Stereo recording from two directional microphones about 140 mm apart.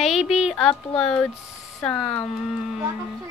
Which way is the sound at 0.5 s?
5° left (ahead or behind).